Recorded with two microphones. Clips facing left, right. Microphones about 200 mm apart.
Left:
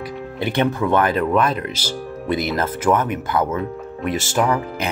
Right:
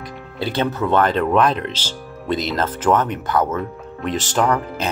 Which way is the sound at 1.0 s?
5° left (ahead or behind).